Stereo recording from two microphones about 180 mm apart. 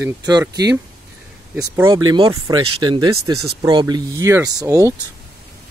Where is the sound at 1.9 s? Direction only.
25° right (ahead or behind).